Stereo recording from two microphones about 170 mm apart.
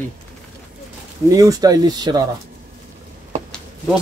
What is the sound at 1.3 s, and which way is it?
Speech, 20° right (ahead or behind).